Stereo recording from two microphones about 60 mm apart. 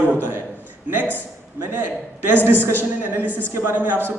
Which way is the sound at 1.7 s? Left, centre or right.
Right.